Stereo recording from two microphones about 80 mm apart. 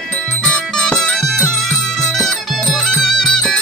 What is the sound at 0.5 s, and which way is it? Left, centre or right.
Music, centre.